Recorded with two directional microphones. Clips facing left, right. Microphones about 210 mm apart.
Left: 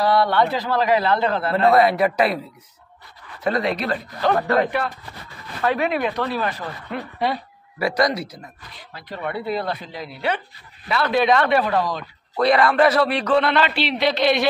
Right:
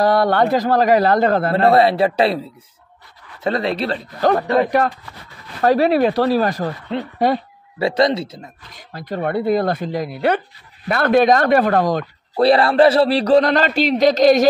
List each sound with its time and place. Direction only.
0.0 s speech: 45° right (ahead or behind)
1.5 s a man's voice: 30° right (ahead or behind)
3.4 s a man's voice: 30° right (ahead or behind)
5.6 s a man's voice: 40° right (ahead or behind)
7.8 s a man's voice: 25° right (ahead or behind)
8.7 s speech: 45° right (ahead or behind)
12.4 s a man's voice: 30° right (ahead or behind)